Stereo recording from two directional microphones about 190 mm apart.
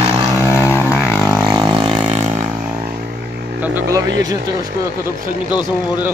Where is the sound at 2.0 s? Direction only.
35° right (ahead or behind).